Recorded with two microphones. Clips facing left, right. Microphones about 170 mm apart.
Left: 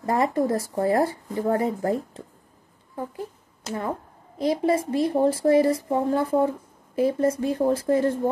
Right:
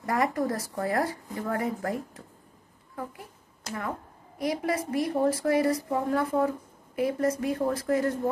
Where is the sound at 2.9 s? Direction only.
30° left (ahead or behind).